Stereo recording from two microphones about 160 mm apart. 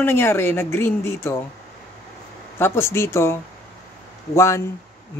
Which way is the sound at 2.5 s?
15° left (ahead or behind).